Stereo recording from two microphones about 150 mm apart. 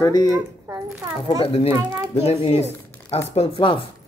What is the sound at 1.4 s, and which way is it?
Speech, 40° left (ahead or behind).